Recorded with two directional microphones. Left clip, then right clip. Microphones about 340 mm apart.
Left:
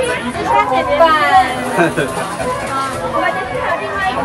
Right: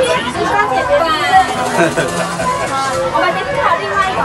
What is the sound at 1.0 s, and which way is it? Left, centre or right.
Speech, centre.